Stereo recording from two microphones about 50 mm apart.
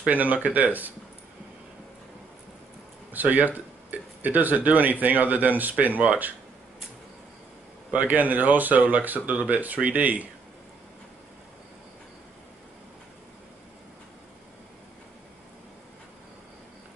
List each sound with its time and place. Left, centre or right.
0.1 s speech: right
3.1 s speech: right
7.9 s speech: right